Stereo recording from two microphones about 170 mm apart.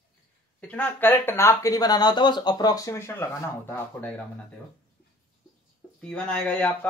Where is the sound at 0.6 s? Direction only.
10° left (ahead or behind).